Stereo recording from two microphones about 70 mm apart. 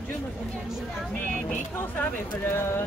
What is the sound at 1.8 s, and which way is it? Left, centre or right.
Speech, left.